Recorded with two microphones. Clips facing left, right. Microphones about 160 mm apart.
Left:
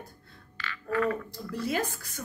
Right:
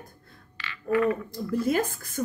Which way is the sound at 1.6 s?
50° right (ahead or behind).